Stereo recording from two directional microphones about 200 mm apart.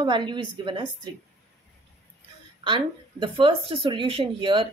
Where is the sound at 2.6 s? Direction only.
25° right (ahead or behind).